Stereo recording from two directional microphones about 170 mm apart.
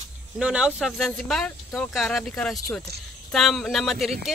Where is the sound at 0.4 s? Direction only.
5° right (ahead or behind).